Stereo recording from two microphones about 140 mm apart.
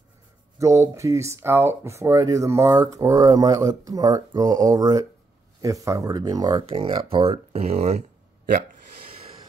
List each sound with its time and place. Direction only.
0.6 s speech: 20° right (ahead or behind); by 8.0 s 50° right (ahead or behind)